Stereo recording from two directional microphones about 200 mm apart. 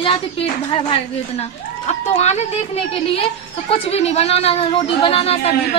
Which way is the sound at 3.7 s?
30° left (ahead or behind).